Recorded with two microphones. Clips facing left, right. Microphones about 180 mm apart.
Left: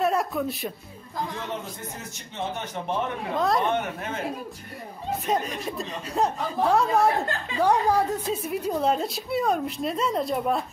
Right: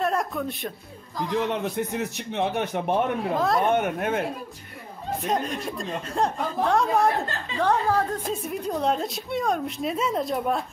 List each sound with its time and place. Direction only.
0.0 s a woman's voice: centre (ahead or behind)
1.3 s speech: 70° right (ahead or behind)
3.3 s a woman's voice: centre (ahead or behind)
3.6 s speech: 50° right (ahead or behind)
5.3 s a woman's voice: 5° left (ahead or behind)
7.6 s a woman's voice: 15° left (ahead or behind)